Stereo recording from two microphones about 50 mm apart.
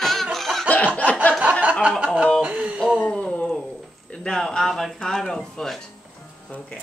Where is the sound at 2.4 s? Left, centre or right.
Right.